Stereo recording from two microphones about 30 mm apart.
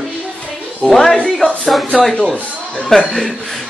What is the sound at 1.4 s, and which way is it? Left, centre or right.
Speech, left.